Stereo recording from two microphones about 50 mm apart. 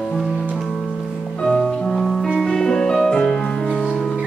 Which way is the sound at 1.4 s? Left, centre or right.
Centre.